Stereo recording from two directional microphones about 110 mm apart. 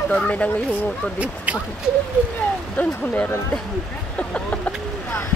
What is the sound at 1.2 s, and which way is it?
Speech, 10° right (ahead or behind).